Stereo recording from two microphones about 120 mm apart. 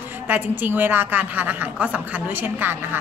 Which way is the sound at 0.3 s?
15° right (ahead or behind).